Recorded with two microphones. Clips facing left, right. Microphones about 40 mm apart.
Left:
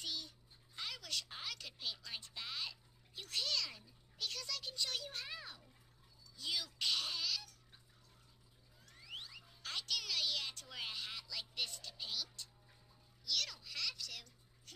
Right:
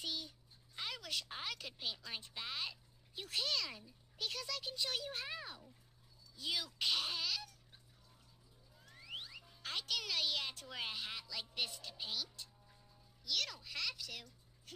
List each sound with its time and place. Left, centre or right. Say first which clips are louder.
0.0 s cat: right 1 dB; centre
0.7 s speech: right 1 dB; centre
8.8 s music: right 2 dB; centre
9.4 s speech: right 1 dB; centre